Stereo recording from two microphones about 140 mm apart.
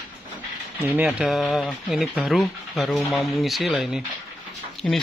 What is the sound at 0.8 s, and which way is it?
Speech, 10° right (ahead or behind).